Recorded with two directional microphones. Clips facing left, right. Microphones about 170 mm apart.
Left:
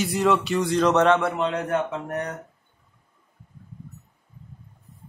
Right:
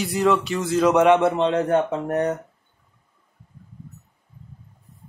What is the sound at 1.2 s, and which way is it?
Speech, 30° right (ahead or behind).